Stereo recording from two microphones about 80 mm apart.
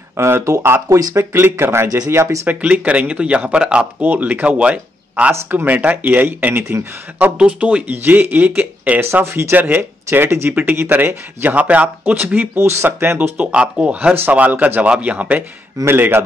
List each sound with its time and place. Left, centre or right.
0.2 s speech: right
0.8 s speech: right
1.1 s speech: right
2.4 s speech: centre
5.3 s speech: right
9.2 s speech: right
12.5 s speech: right
13.5 s speech: centre
15.8 s speech: right